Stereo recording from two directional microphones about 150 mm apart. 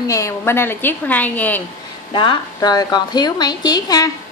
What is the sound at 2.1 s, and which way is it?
A woman's voice, 35° left (ahead or behind).